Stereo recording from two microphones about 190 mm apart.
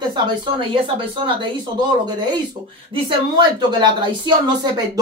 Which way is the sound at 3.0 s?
25° right (ahead or behind).